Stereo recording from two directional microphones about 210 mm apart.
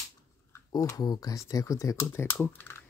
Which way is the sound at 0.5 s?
15° left (ahead or behind).